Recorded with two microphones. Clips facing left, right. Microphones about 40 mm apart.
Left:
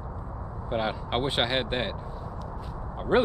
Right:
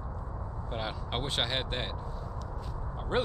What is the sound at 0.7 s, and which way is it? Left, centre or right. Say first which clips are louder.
Speech: left 8 dB; centre.